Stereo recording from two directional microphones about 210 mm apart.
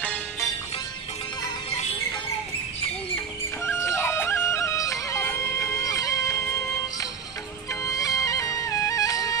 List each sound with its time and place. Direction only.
0.0 s music: 10° left (ahead or behind)
3.6 s music: 15° left (ahead or behind)
7.8 s music: 15° left (ahead or behind)